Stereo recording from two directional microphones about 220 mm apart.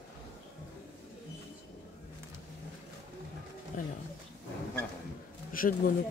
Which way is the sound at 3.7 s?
35° left (ahead or behind).